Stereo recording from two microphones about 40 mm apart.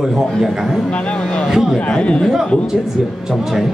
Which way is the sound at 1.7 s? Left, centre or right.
Left.